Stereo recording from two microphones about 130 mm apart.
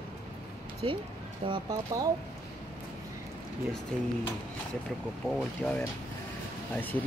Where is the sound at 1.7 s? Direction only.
25° right (ahead or behind).